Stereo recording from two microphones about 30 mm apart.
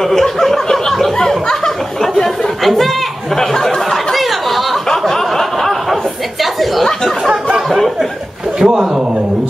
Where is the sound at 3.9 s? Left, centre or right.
Centre.